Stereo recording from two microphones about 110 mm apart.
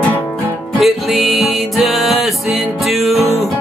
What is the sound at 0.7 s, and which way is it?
Music, centre (ahead or behind).